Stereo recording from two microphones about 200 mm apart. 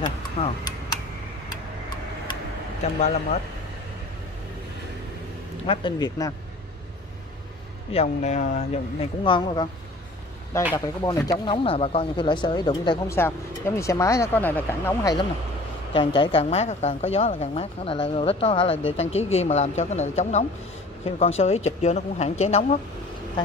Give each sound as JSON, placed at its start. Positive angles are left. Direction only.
{"t": 0.0, "sound": "a sound", "side_deg": 20}
{"t": 5.7, "sound": "speech", "side_deg": 20}
{"t": 7.9, "sound": "speech", "side_deg": 35}
{"t": 15.9, "sound": "speech", "side_deg": 25}